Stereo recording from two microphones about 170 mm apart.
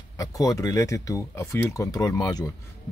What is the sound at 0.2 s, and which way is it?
Speech, 20° left (ahead or behind).